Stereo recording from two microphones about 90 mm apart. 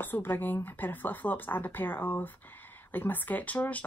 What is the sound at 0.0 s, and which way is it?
A woman's voice, 20° left (ahead or behind).